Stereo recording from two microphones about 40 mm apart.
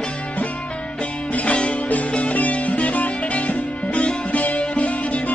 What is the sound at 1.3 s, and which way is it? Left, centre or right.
Music, left.